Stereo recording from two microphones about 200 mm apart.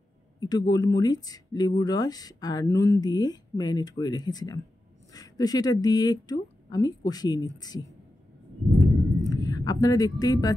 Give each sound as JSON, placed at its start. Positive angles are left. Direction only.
{"t": 0.4, "sound": "speech", "side_deg": 20}
{"t": 9.2, "sound": "speech", "side_deg": 20}